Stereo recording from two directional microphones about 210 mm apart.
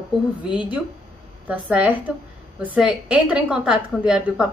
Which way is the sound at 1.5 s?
5° right (ahead or behind).